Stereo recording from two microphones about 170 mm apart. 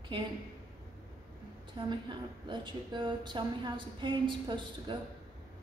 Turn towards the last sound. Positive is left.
turn(degrees=-25)  # may be behind; listen again after turning